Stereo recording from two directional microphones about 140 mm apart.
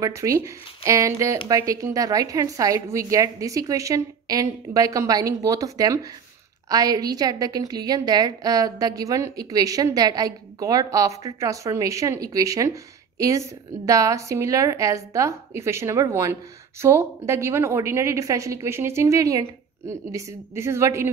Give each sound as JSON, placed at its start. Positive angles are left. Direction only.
{"t": 0.0, "sound": "a woman's voice", "side_deg": -20}